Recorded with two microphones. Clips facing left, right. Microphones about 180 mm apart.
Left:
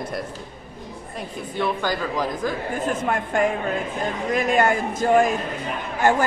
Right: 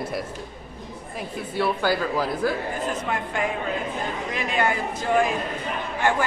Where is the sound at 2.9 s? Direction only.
50° left (ahead or behind).